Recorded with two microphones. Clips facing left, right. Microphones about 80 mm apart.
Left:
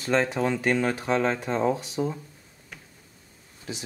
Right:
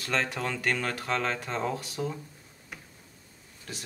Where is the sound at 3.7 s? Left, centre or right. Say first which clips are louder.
Left 6 dB; centre.